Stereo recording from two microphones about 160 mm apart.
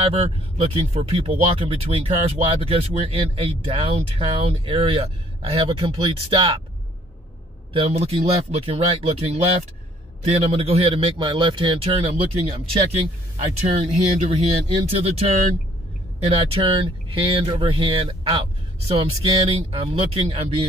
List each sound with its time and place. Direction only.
0.0 s speech: 40° right (ahead or behind)
7.7 s speech: 40° right (ahead or behind)
13.6 s speech: 40° right (ahead or behind)